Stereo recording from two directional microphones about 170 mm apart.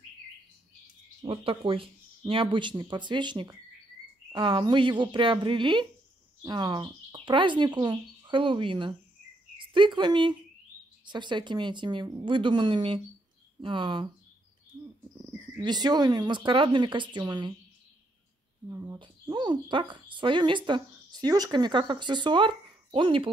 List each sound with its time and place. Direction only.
1.2 s speech: 35° right (ahead or behind)
15.6 s speech: 25° right (ahead or behind)
18.7 s speech: 20° right (ahead or behind)